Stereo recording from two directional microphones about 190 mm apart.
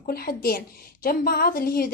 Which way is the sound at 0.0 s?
50° left (ahead or behind).